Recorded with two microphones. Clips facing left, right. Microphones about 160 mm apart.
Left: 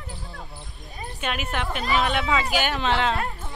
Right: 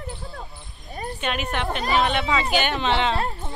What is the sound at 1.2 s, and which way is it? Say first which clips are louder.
A woman's voice: right 1 dB; 5° left (ahead or behind).